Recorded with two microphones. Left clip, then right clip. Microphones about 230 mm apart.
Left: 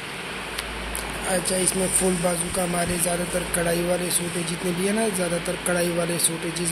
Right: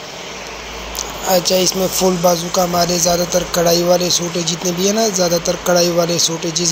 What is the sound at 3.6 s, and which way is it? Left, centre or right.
Speech, centre.